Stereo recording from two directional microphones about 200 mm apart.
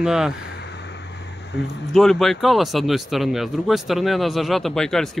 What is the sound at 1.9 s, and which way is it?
Speech, centre (ahead or behind).